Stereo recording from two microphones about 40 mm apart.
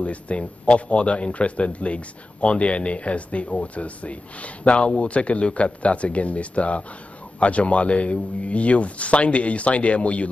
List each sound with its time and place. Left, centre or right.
0.0 s a man's voice: left